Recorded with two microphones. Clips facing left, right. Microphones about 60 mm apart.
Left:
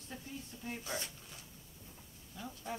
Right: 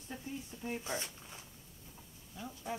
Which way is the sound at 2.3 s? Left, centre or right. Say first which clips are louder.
Right 1 dB; centre.